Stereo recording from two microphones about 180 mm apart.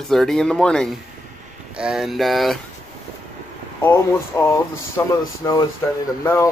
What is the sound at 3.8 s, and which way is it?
Speech, 15° left (ahead or behind).